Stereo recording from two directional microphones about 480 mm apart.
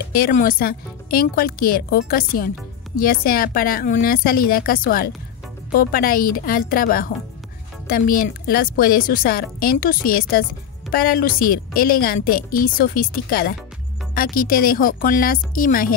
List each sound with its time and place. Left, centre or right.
0.1 s a woman's voice: centre